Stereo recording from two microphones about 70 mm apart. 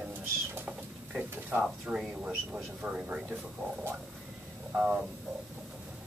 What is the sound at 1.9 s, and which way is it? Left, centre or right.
Speech, centre.